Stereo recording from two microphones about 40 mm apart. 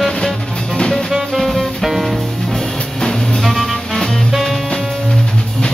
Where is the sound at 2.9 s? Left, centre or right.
Centre.